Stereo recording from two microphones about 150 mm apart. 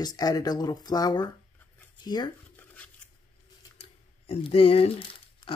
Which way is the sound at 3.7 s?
40° left (ahead or behind).